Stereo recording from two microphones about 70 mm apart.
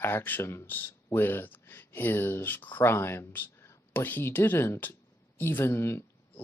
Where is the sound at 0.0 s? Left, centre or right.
Left.